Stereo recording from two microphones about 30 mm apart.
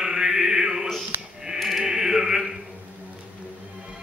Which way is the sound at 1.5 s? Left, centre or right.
Centre.